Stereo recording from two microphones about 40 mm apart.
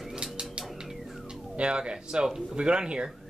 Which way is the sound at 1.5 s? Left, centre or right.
Right.